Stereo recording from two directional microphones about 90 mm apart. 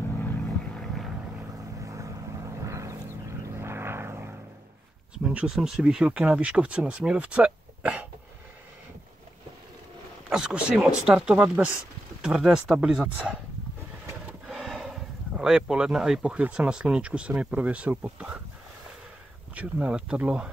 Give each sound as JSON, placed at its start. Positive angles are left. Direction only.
{"t": 0.7, "sound": "vehicle", "side_deg": 0}
{"t": 1.8, "sound": "vehicle", "side_deg": -35}
{"t": 5.2, "sound": "speech", "side_deg": -10}
{"t": 10.3, "sound": "speech", "side_deg": -10}
{"t": 14.5, "sound": "a sound", "side_deg": 0}
{"t": 16.2, "sound": "speech", "side_deg": -15}
{"t": 19.5, "sound": "speech", "side_deg": -15}